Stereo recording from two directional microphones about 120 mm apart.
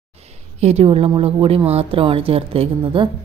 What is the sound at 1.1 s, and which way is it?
Speech, 45° right (ahead or behind).